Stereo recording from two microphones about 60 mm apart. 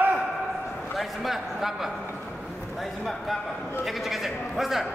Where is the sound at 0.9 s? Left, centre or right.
Centre.